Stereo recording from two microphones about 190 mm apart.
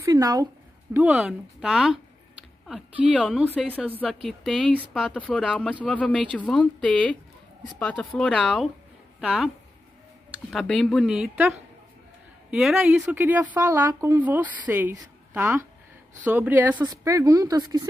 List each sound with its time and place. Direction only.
0.0 s a sound: 20° right (ahead or behind)
0.9 s speech: 5° right (ahead or behind)
4.3 s speech: 5° left (ahead or behind)
5.1 s speech: 10° left (ahead or behind)
10.5 s a woman's voice: centre (ahead or behind); by 17.8 s 20° right (ahead or behind)